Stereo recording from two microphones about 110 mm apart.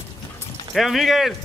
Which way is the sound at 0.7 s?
Centre (ahead or behind).